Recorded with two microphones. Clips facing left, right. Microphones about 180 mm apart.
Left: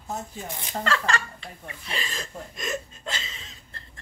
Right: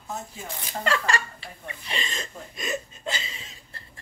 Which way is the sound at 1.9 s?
5° left (ahead or behind).